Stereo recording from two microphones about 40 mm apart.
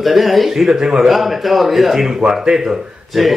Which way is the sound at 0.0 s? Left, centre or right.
Centre.